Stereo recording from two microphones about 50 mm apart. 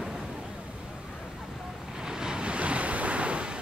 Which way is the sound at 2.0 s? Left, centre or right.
Centre.